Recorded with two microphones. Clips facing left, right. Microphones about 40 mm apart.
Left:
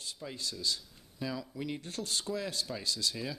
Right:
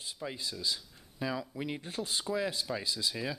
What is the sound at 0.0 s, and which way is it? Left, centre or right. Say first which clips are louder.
Speech: right 2 dB; centre.